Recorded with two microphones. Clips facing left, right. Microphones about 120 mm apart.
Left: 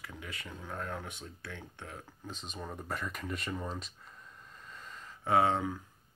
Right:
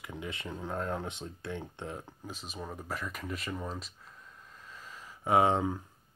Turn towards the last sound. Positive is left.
turn(degrees=-20)  # may be behind; listen again after turning